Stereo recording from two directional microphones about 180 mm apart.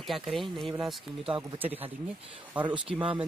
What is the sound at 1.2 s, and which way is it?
Speech, 30° right (ahead or behind).